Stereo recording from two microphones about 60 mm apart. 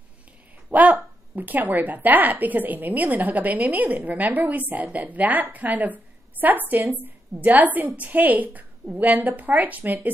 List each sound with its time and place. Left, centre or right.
0.7 s a woman's voice: right